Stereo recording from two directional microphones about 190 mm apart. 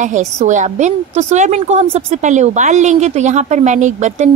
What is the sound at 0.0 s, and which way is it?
A woman's voice, 40° right (ahead or behind).